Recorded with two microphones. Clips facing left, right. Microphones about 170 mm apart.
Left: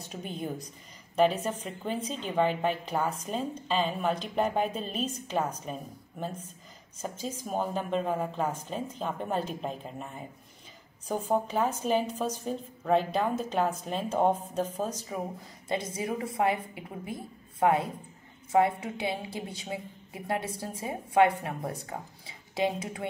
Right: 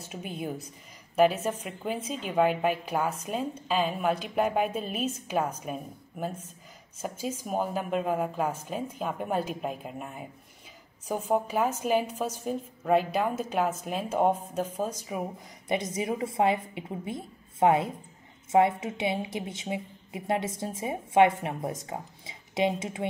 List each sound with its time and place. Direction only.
0.1 s a woman's voice: 5° right (ahead or behind); by 23.0 s 20° right (ahead or behind)